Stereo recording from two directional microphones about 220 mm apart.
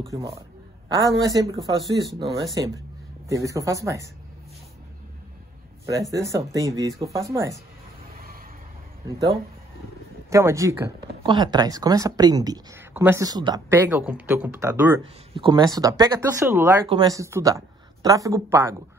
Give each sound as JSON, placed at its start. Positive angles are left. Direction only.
{"t": 0.0, "sound": "speech", "side_deg": -15}
{"t": 6.1, "sound": "speech", "side_deg": -15}
{"t": 8.1, "sound": "vehicle", "side_deg": -45}
{"t": 10.3, "sound": "speech", "side_deg": -15}
{"t": 15.3, "sound": "speech", "side_deg": -20}